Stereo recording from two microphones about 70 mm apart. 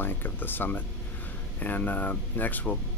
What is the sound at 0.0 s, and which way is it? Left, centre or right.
Speech, left.